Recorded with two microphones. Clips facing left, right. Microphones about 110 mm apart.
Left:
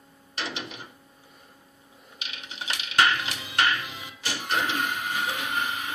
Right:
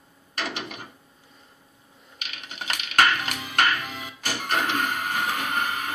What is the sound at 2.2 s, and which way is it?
Music, 50° right (ahead or behind).